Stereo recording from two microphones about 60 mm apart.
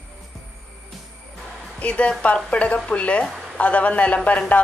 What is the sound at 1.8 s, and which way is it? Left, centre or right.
A woman's voice, left.